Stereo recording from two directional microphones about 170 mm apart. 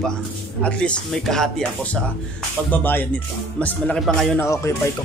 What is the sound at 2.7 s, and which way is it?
Speech, 10° left (ahead or behind).